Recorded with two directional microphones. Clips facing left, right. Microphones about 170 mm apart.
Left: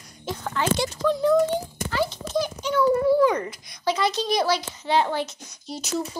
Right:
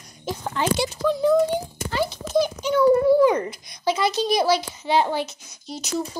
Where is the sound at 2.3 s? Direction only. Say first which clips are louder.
Right 4 dB; 15° right (ahead or behind).